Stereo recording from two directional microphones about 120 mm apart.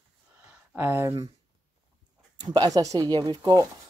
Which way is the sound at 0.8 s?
20° right (ahead or behind).